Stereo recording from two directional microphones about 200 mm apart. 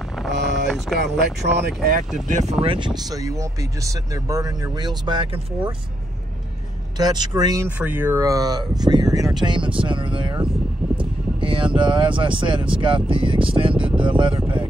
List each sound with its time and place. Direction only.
0.3 s vehicle: 60° right (ahead or behind)
0.7 s speech: centre (ahead or behind)
0.9 s speech: 55° right (ahead or behind)
2.6 s speech: 25° right (ahead or behind)
7.0 s speech: 20° right (ahead or behind)
13.9 s a sound: 25° right (ahead or behind)